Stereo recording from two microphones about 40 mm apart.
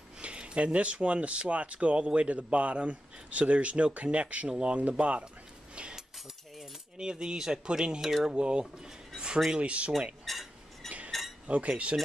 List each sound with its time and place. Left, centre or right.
0.2 s speech: right
5.9 s cutlery: centre
7.1 s speech: centre
8.4 s speech: right
10.2 s cutlery: centre
11.4 s speech: right
11.7 s speech: right